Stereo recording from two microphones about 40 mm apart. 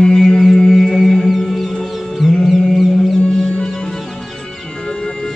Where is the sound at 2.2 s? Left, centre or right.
Centre.